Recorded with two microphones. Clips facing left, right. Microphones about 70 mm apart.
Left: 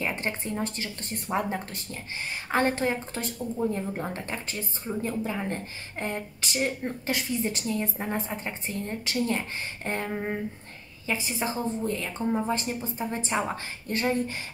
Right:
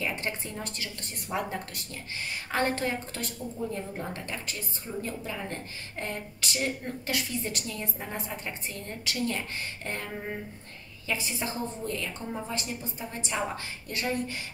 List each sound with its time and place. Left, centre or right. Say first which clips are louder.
0.0 s a woman's voice: left 2 dB; left
2.5 s a woman's voice: left 3 dB; left